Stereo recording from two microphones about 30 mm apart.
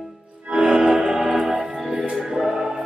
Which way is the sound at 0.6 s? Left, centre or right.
Centre.